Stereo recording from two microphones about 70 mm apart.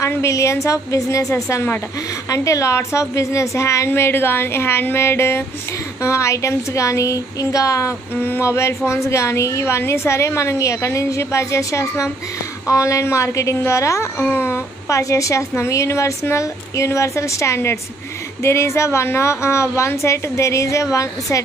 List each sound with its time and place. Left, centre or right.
0.3 s a woman's voice: left
2.2 s a woman's voice: left
8.2 s a woman's voice: left
14.3 s speech: left
14.9 s a woman's voice: left